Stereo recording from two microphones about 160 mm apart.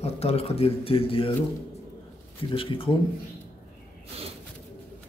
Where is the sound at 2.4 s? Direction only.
35° left (ahead or behind).